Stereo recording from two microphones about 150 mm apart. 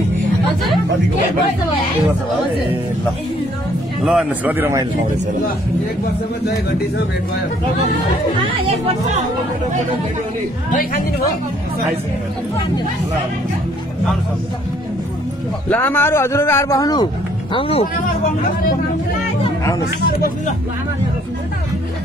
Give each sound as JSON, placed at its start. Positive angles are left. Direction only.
{"t": 4.0, "sound": "speech", "side_deg": -5}
{"t": 4.6, "sound": "speech", "side_deg": -15}
{"t": 8.8, "sound": "speech", "side_deg": -50}
{"t": 10.7, "sound": "a woman's voice", "side_deg": 75}
{"t": 15.7, "sound": "speech", "side_deg": 15}